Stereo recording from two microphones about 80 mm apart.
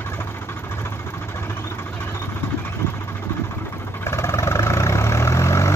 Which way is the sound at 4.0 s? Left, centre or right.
Left.